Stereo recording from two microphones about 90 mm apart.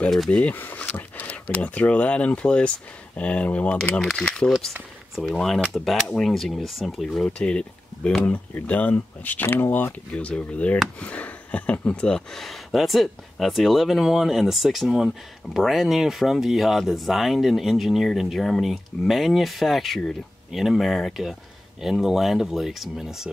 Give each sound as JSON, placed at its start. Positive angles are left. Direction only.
{"t": 0.0, "sound": "speech", "side_deg": 5}
{"t": 0.4, "sound": "speech", "side_deg": 20}
{"t": 4.5, "sound": "speech", "side_deg": 5}